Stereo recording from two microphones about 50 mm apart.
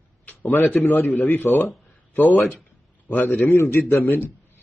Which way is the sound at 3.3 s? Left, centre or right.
Left.